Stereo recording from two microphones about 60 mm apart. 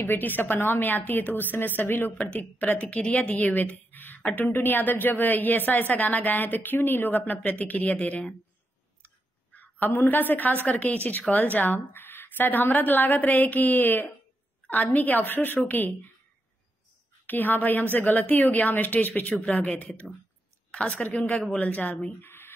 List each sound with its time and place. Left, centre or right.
0.0 s speech: left
2.2 s speech: left
3.1 s speech: centre
3.3 s speech: left
9.0 s a sound: left
11.5 s speech: left
17.3 s a woman's voice: left
22.2 s a sound: left